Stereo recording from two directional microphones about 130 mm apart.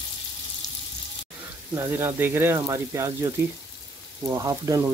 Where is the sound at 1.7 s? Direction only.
20° right (ahead or behind).